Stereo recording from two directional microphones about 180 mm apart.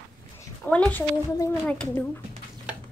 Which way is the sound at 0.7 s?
5° left (ahead or behind).